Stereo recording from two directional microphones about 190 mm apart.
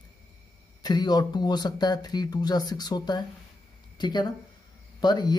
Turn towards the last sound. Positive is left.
turn(degrees=20)  # may be behind; listen again after turning